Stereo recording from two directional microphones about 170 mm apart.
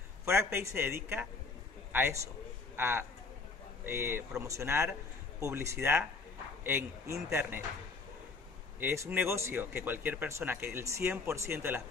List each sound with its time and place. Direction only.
0.2 s a man's voice: 15° right (ahead or behind)
8.7 s speech: 15° right (ahead or behind)